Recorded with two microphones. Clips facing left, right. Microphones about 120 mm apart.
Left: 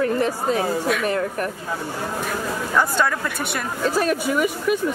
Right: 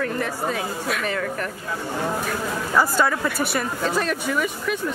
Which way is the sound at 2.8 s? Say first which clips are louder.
Right 1 dB; 5° right (ahead or behind).